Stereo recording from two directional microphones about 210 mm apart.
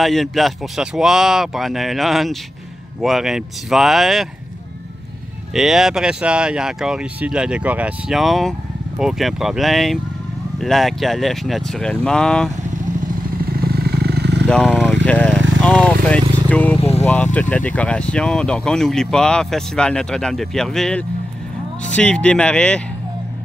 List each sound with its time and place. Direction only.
0.0 s speech: centre (ahead or behind)
5.5 s speech: centre (ahead or behind)
13.5 s vehicle: 50° right (ahead or behind)
14.5 s speech: centre (ahead or behind)
15.6 s vehicle: 5° left (ahead or behind)
17.0 s speech: 5° left (ahead or behind)